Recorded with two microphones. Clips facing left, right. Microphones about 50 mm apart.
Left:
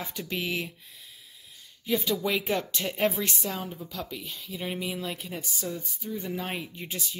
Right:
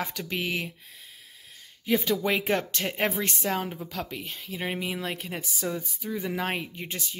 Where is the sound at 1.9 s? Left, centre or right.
Right.